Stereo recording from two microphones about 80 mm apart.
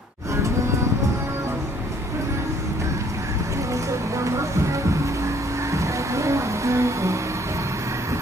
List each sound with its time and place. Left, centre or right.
4.2 s music: right
5.7 s music: right